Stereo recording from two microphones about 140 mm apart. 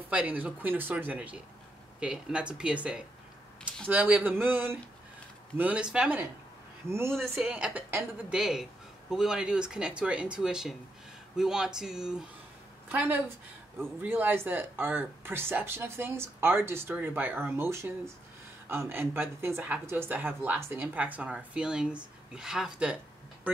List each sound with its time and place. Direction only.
0.1 s speech: 10° right (ahead or behind)
7.2 s speech: 5° right (ahead or behind)